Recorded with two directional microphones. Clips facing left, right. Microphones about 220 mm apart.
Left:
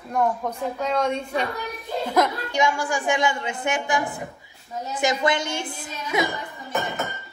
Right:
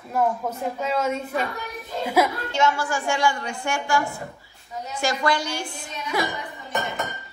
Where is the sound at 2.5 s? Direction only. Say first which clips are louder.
Even; 15° left (ahead or behind).